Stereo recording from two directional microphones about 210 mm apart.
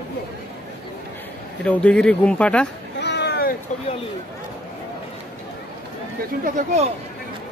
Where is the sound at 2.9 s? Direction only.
55° left (ahead or behind).